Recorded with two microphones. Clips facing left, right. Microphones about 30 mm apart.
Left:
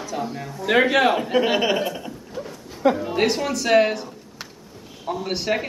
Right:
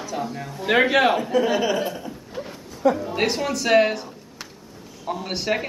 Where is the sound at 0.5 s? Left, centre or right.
Centre.